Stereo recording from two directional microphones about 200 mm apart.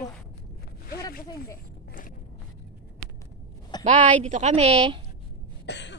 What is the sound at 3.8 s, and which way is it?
A woman's voice, 35° right (ahead or behind).